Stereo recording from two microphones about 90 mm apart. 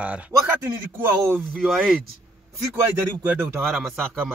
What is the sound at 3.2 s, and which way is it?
Speech, 15° right (ahead or behind).